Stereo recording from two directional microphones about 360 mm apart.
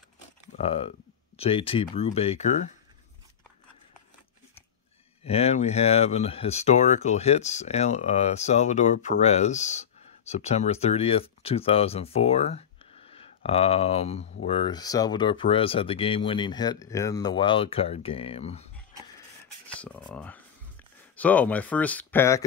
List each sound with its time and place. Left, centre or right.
0.6 s speech: centre
5.2 s speech: centre
19.8 s speech: centre